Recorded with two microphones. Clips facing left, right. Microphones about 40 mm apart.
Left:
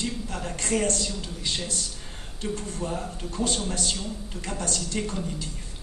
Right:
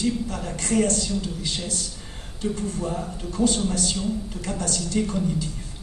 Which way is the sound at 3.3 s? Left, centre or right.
Left.